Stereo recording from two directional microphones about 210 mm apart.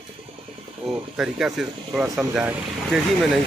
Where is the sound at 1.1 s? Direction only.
Centre (ahead or behind).